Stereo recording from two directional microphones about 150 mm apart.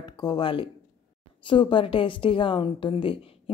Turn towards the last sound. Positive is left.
turn(degrees=35)  # may be behind; listen again after turning